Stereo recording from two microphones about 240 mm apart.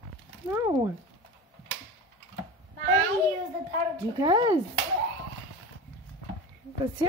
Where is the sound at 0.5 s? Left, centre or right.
Centre.